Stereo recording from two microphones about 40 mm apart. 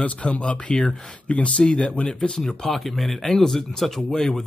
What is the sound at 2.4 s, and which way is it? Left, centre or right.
Speech, centre.